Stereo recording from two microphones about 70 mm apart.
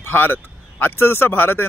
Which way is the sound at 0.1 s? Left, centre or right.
Left.